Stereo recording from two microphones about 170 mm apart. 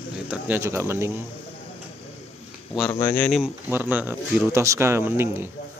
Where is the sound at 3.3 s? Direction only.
Centre (ahead or behind).